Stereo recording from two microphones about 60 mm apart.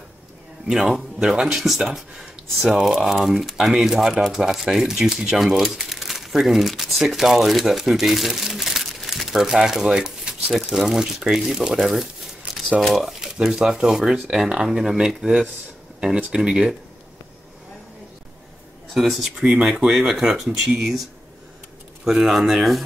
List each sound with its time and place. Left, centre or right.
0.8 s speech: centre
12.4 s a sound: right
12.9 s speech: centre
18.9 s speech: centre
19.4 s speech: centre
22.0 s speech: centre